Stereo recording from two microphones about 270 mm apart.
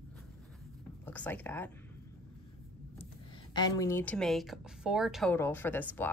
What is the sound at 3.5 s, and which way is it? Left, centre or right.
A woman's voice, centre.